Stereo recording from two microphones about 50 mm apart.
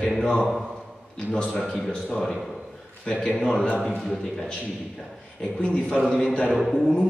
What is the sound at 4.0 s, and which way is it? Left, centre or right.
Speech, centre.